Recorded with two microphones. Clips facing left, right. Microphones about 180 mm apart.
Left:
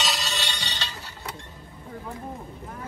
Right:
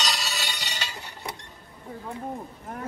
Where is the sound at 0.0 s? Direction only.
Centre (ahead or behind).